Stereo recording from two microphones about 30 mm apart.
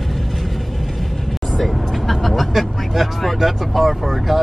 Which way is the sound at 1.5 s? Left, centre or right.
Centre.